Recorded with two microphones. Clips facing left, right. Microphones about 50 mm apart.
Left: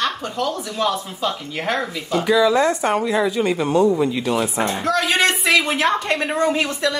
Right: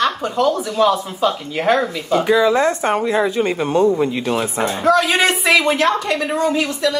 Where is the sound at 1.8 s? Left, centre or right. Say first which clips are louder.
Right 5 dB; right.